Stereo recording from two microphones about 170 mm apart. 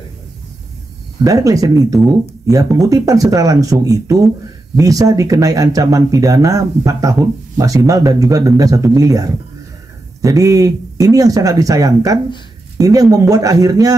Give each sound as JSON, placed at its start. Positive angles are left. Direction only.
{"t": 1.2, "sound": "speech", "side_deg": -20}